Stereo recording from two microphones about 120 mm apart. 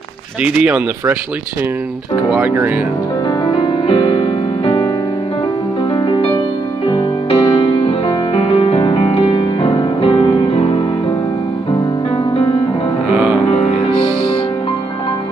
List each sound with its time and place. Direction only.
0.4 s speech: 10° right (ahead or behind)
3.4 s music: 50° left (ahead or behind)
5.9 s music: 45° left (ahead or behind)
7.2 s music: 55° left (ahead or behind)
9.6 s music: 40° left (ahead or behind)
13.1 s music: 10° right (ahead or behind)
13.5 s music: 55° left (ahead or behind)